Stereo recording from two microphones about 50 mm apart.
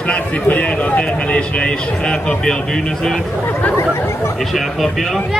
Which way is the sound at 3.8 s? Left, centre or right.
Left.